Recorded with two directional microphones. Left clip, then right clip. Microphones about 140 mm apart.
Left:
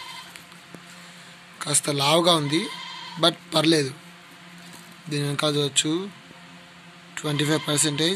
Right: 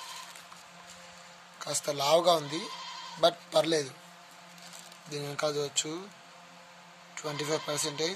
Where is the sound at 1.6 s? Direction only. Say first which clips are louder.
Left 7 dB; 10° right (ahead or behind).